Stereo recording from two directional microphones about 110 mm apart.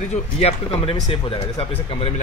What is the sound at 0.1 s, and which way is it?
Speech, 65° left (ahead or behind).